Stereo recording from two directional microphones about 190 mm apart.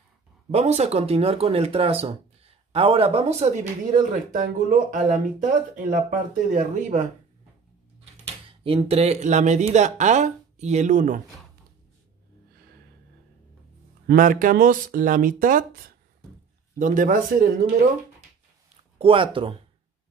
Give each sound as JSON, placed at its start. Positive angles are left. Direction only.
{"t": 0.5, "sound": "speech", "side_deg": -35}
{"t": 8.5, "sound": "speech", "side_deg": -30}
{"t": 14.0, "sound": "speech", "side_deg": -45}
{"t": 18.9, "sound": "speech", "side_deg": -25}